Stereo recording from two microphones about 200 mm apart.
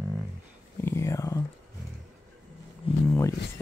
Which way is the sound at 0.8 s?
15° left (ahead or behind).